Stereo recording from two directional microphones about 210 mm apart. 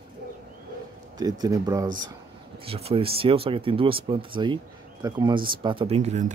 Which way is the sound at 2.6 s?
30° right (ahead or behind).